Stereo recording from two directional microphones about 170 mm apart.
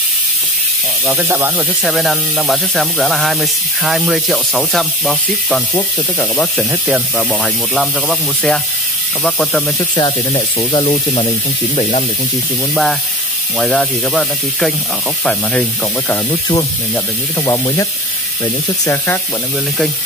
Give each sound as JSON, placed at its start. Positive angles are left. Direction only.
{"t": 1.0, "sound": "speech", "side_deg": -15}
{"t": 1.9, "sound": "speech", "side_deg": 0}
{"t": 5.8, "sound": "speech", "side_deg": 15}
{"t": 6.7, "sound": "speech", "side_deg": -10}
{"t": 9.8, "sound": "speech", "side_deg": 25}
{"t": 13.6, "sound": "speech", "side_deg": 5}
{"t": 16.3, "sound": "speech", "side_deg": 25}